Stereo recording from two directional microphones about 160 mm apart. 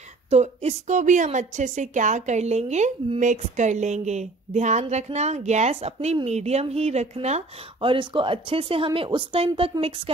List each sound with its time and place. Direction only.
0.3 s a woman's voice: 40° right (ahead or behind)